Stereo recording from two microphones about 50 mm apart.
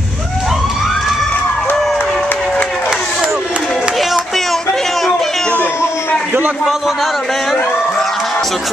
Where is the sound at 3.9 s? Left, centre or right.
Centre.